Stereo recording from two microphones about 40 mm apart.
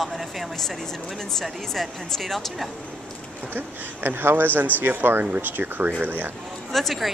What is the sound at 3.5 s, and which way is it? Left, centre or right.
Speech, right.